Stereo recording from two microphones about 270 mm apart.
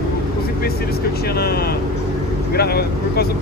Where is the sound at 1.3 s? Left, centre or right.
Left.